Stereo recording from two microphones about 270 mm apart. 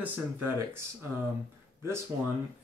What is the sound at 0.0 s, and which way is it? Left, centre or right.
Speech, centre.